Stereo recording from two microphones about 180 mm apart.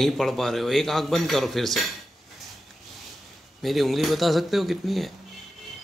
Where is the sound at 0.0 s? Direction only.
Centre (ahead or behind).